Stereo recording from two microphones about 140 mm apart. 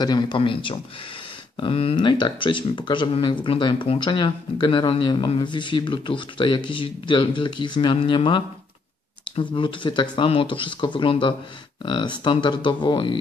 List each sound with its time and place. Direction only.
0.0 s speech: 30° left (ahead or behind)